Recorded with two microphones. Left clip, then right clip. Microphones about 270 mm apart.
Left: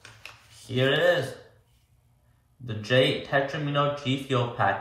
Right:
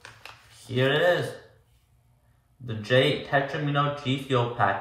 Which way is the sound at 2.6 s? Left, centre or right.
Centre.